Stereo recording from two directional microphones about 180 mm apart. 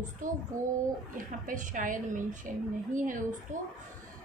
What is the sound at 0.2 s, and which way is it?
A woman's voice, 45° right (ahead or behind).